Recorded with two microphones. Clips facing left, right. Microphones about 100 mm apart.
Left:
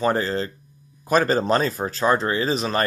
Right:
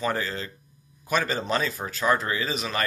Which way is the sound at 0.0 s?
35° left (ahead or behind).